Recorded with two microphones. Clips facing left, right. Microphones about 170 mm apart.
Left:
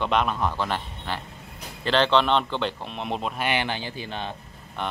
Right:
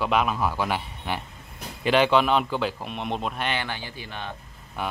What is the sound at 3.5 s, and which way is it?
Speech, 20° left (ahead or behind).